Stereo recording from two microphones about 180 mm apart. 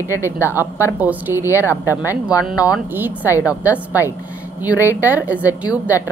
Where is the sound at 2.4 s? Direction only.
10° right (ahead or behind).